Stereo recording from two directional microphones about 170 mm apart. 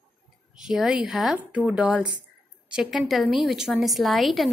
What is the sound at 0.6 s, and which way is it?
A woman's voice, 5° right (ahead or behind).